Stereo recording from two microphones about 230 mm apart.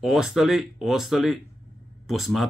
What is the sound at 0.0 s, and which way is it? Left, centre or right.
Speech, centre.